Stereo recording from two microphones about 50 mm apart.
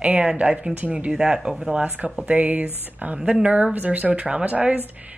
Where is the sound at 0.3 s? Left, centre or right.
Centre.